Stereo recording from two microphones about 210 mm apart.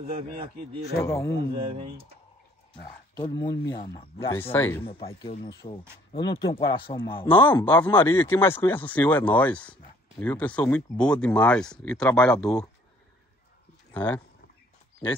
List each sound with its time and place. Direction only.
0.0 s a man's voice: 30° right (ahead or behind)
1.0 s speech: 15° left (ahead or behind)
3.2 s speech: 15° left (ahead or behind)
4.4 s speech: 10° left (ahead or behind)
5.4 s speech: 20° left (ahead or behind)
7.4 s speech: 10° left (ahead or behind)
13.9 s speech: 10° left (ahead or behind)